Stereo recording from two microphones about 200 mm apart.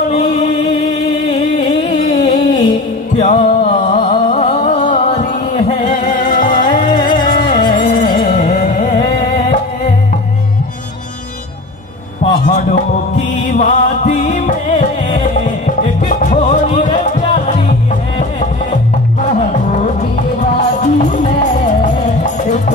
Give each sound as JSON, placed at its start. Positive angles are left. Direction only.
{"t": 1.3, "sound": "music", "side_deg": 25}
{"t": 2.0, "sound": "a sound", "side_deg": 40}
{"t": 3.2, "sound": "music", "side_deg": 35}
{"t": 7.3, "sound": "music", "side_deg": 25}
{"t": 7.6, "sound": "music", "side_deg": 40}
{"t": 12.2, "sound": "mantra", "side_deg": 35}
{"t": 15.2, "sound": "music", "side_deg": 35}
{"t": 19.7, "sound": "music", "side_deg": 35}